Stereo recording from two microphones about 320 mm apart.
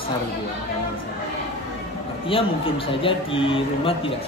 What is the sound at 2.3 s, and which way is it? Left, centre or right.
Speech, centre.